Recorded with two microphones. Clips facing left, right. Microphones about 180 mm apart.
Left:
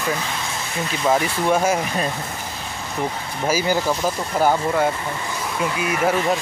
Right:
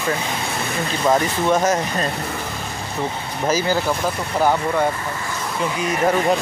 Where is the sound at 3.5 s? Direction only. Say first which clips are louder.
Even; 10° left (ahead or behind).